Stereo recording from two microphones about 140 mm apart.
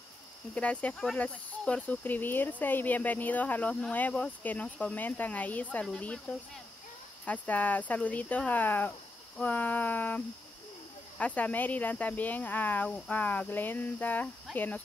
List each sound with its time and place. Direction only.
0.6 s speech: 10° left (ahead or behind)